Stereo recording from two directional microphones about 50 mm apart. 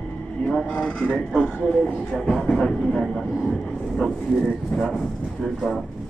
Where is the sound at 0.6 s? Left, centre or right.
Left.